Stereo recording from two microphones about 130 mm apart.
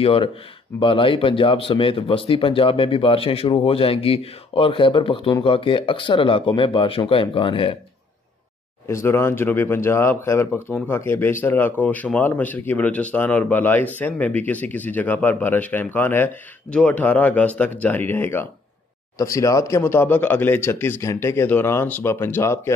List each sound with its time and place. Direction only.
0.0 s speech: 45° left (ahead or behind)
8.8 s speech: 20° left (ahead or behind)